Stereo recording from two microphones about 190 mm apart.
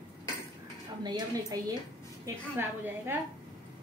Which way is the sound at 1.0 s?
20° right (ahead or behind).